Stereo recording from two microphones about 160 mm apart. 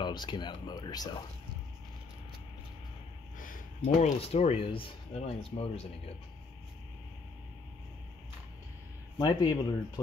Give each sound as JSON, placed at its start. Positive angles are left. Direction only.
{"t": 0.0, "sound": "speech", "side_deg": 30}
{"t": 3.3, "sound": "a sound", "side_deg": 55}
{"t": 4.2, "sound": "speech", "side_deg": 40}
{"t": 9.2, "sound": "speech", "side_deg": 25}